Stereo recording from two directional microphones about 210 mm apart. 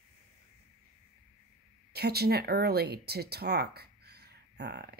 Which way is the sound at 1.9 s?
50° right (ahead or behind).